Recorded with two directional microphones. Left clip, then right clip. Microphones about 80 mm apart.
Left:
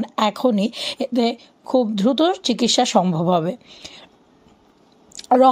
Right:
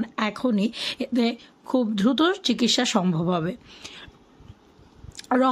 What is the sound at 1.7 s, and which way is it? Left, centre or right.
Speech, centre.